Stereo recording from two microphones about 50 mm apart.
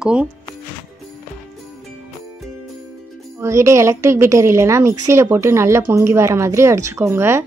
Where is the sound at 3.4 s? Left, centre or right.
Right.